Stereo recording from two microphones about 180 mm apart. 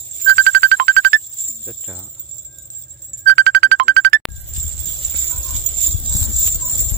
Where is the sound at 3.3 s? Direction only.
55° right (ahead or behind).